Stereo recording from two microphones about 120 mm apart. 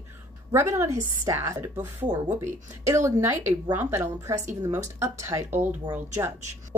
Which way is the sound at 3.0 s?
25° right (ahead or behind).